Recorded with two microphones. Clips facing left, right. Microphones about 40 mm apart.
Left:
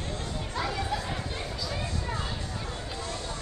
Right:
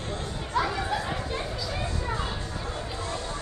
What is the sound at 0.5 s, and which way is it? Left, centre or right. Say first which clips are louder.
Chatter: right 5 dB; right.